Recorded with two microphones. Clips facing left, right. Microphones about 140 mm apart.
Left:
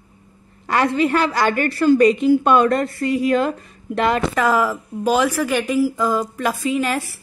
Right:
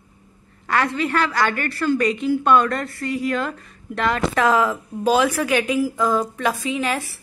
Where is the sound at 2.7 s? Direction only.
35° left (ahead or behind).